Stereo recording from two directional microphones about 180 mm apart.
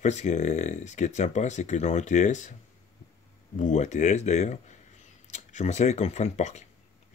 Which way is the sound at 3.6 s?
40° left (ahead or behind).